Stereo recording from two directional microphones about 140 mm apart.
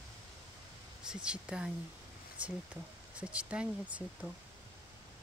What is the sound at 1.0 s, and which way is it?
Speech, 5° right (ahead or behind).